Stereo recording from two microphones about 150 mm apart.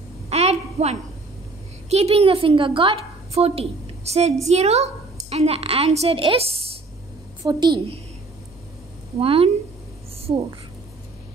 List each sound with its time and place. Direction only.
0.3 s a sound: 45° right (ahead or behind)
1.9 s a woman's voice: 45° right (ahead or behind)
7.4 s a woman's voice: 30° right (ahead or behind)
9.2 s a woman's voice: 40° right (ahead or behind)